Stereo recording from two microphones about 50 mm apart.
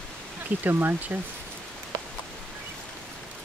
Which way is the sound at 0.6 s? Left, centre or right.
Right.